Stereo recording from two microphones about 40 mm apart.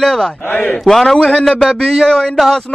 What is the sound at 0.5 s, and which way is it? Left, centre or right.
Speech, left.